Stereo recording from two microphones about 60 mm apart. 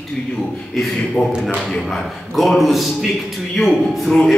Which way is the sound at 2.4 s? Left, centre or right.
Centre.